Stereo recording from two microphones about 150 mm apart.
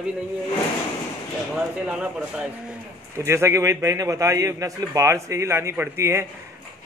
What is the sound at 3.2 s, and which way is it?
A man's voice, 20° right (ahead or behind).